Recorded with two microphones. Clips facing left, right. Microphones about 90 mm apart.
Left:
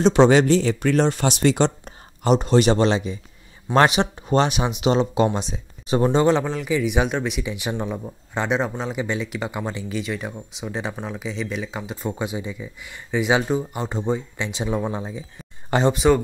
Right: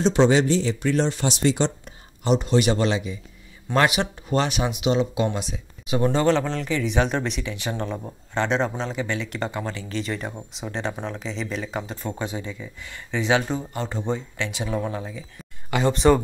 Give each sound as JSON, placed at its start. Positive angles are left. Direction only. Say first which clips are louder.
{"t": 0.0, "sound": "speech", "louder": "left 3 dB", "side_deg": 65}
{"t": 1.9, "sound": "speech", "louder": "left 3 dB", "side_deg": 40}
{"t": 4.8, "sound": "speech", "louder": "left 4 dB", "side_deg": 40}
{"t": 6.1, "sound": "speech", "louder": "left 1 dB", "side_deg": 15}
{"t": 15.9, "sound": "speech", "louder": "right 1 dB", "side_deg": 5}